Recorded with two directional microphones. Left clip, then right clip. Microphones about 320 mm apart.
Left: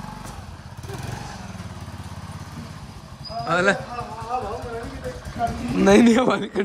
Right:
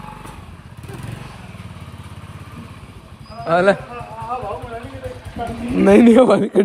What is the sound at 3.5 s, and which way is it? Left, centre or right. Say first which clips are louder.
Speech: right 5 dB; centre.